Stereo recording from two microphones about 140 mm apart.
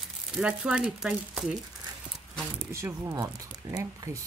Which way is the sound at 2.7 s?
20° right (ahead or behind).